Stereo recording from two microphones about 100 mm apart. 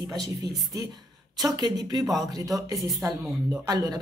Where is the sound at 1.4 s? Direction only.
40° right (ahead or behind).